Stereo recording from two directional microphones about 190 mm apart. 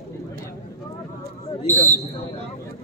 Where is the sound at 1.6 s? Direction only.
10° left (ahead or behind).